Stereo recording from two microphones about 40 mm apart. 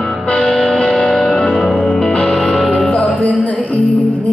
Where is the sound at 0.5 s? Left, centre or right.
Centre.